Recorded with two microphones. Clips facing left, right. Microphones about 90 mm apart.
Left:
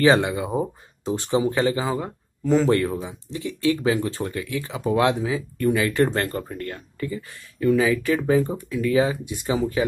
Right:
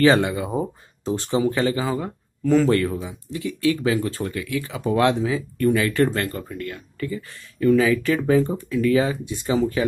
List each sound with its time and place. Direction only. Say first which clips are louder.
0.0 s speech: right 1 dB; 15° left (ahead or behind); by 6.8 s 35° left (ahead or behind)
7.0 s speech: right 2 dB; 15° left (ahead or behind)